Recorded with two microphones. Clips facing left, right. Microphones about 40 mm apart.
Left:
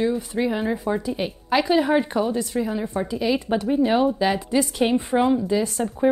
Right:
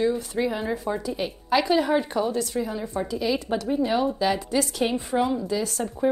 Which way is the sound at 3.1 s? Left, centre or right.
Centre.